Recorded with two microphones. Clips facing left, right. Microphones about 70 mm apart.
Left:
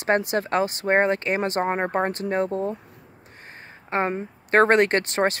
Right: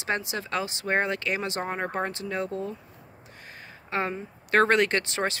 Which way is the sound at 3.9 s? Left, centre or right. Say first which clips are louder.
Left 5 dB; left.